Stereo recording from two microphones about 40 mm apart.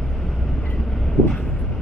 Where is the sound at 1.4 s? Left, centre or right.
Centre.